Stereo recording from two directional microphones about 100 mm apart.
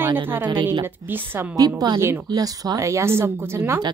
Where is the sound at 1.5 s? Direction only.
40° right (ahead or behind).